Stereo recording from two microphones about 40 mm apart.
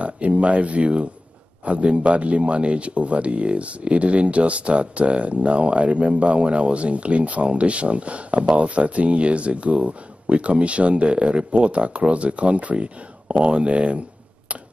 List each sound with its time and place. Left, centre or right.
0.0 s speech: right